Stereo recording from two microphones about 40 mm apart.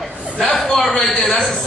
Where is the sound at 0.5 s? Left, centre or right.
Centre.